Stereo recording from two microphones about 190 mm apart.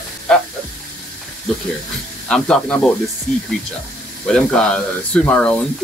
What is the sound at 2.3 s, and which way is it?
Speech, 5° left (ahead or behind).